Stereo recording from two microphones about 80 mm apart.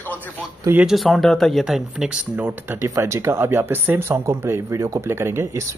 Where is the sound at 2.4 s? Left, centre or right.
Right.